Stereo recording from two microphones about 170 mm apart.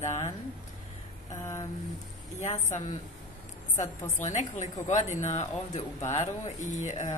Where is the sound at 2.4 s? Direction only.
45° left (ahead or behind).